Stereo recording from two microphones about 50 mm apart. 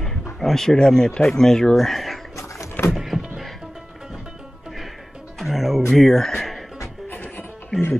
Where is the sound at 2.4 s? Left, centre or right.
Left.